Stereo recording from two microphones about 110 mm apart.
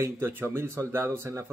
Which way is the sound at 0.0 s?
20° right (ahead or behind).